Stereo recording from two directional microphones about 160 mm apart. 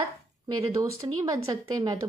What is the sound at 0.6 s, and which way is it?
A woman's voice, 25° right (ahead or behind).